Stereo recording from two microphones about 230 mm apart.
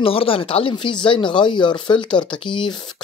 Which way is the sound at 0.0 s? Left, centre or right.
Left.